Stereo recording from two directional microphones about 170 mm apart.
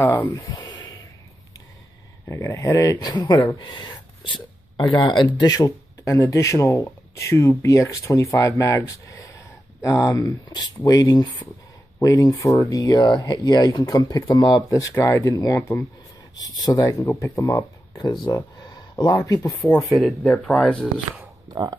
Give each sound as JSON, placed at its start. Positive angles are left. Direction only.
{"t": 0.0, "sound": "speech", "side_deg": 20}
{"t": 2.2, "sound": "speech", "side_deg": 15}
{"t": 19.7, "sound": "speech", "side_deg": 0}